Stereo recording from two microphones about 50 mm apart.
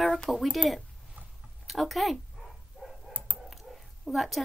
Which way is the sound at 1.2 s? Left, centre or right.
Right.